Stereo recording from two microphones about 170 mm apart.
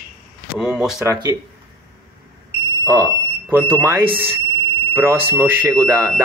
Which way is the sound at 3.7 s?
10° right (ahead or behind).